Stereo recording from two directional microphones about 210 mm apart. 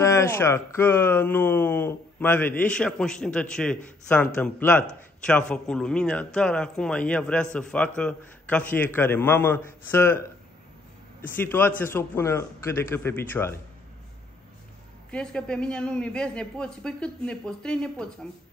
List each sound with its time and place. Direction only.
0.0 s speech: 15° left (ahead or behind)
11.2 s speech: 10° left (ahead or behind)
15.0 s speech: 5° left (ahead or behind)